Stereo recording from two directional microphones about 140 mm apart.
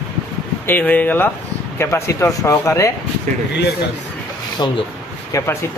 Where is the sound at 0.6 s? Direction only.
10° left (ahead or behind).